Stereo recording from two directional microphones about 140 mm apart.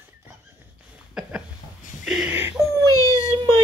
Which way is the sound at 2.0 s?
5° right (ahead or behind).